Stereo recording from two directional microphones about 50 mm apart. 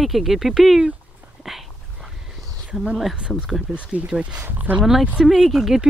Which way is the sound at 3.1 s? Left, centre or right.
Right.